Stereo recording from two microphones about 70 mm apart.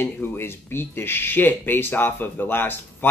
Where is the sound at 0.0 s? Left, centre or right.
Left.